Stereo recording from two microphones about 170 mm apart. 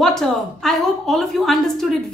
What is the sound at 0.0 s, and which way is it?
A woman's voice, 5° left (ahead or behind).